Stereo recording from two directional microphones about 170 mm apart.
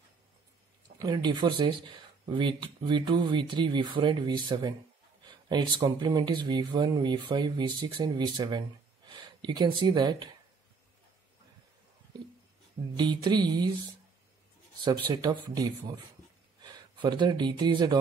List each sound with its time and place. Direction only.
0.9 s speech: 25° right (ahead or behind)
12.9 s speech: 25° right (ahead or behind)
15.0 s speech: 25° right (ahead or behind)